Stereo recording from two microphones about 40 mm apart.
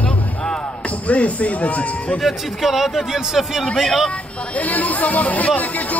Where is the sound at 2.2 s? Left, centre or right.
Centre.